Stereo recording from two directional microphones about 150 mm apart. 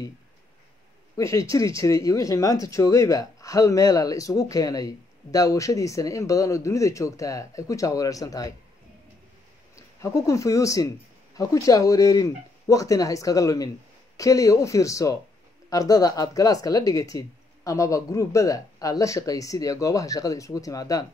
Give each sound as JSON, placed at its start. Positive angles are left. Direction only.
{"t": 1.1, "sound": "speech", "side_deg": 20}
{"t": 9.8, "sound": "speech", "side_deg": 20}